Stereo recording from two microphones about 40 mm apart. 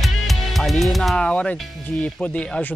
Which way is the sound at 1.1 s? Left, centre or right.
Left.